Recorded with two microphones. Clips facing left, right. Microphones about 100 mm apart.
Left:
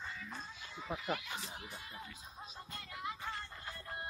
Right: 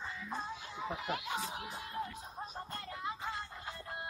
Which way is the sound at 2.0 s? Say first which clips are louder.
Right 9 dB; 50° right (ahead or behind).